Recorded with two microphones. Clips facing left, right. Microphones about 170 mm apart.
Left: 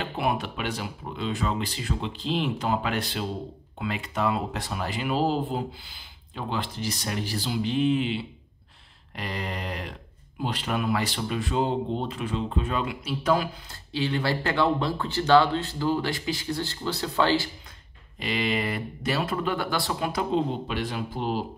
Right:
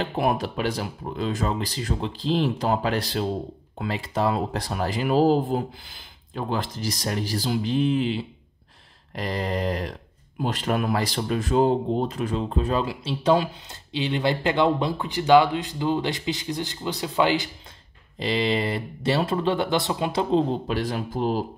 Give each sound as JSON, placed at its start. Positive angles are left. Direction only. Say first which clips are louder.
{"t": 0.0, "sound": "speech", "louder": "right 4 dB", "side_deg": -40}
{"t": 18.2, "sound": "speech", "louder": "right 4 dB", "side_deg": -30}
{"t": 20.6, "sound": "speech", "louder": "right 4 dB", "side_deg": -40}